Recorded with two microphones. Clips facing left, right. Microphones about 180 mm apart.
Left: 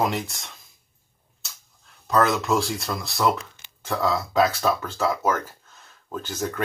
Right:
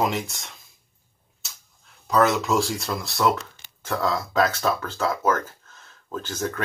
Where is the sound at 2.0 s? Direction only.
Centre (ahead or behind).